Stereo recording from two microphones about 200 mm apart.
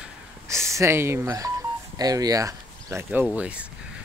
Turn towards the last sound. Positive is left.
turn(degrees=-5)  # may be behind; listen again after turning